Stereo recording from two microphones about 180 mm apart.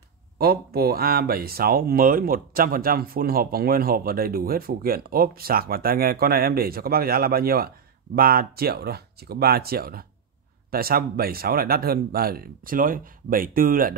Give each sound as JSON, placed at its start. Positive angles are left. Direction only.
{"t": 0.4, "sound": "speech", "side_deg": -55}